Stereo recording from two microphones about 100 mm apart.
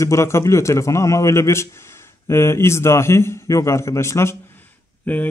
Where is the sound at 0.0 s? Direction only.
30° left (ahead or behind).